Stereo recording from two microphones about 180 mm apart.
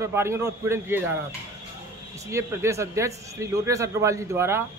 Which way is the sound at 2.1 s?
15° right (ahead or behind).